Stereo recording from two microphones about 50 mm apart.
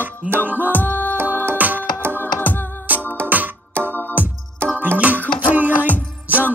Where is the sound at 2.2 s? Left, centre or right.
Left.